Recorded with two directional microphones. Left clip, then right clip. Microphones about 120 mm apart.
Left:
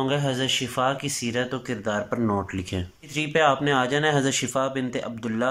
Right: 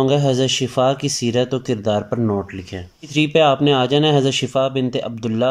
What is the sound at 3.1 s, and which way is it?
Speech, 25° right (ahead or behind).